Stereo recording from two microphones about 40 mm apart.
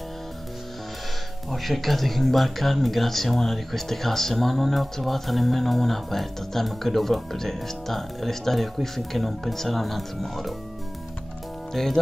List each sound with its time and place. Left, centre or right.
1.5 s speech: centre
11.7 s speech: centre